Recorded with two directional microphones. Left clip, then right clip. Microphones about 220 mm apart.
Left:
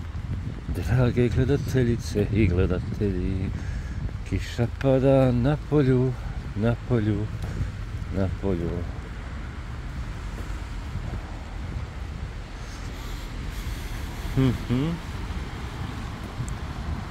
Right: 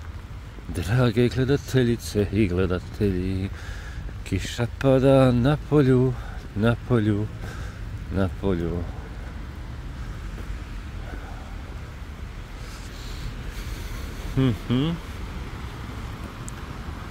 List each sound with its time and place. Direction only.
0.7 s speech: 20° right (ahead or behind)
8.4 s speech: 25° right (ahead or behind)
14.4 s speech: 20° right (ahead or behind)